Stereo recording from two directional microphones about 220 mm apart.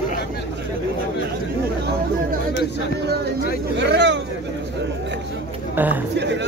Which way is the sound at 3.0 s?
45° right (ahead or behind).